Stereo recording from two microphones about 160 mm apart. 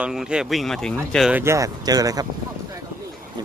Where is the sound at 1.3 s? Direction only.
15° right (ahead or behind).